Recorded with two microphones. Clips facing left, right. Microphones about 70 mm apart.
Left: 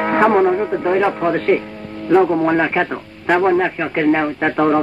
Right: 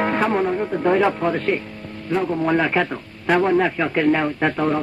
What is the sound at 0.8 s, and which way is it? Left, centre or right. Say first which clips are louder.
Speech: right 2 dB; centre.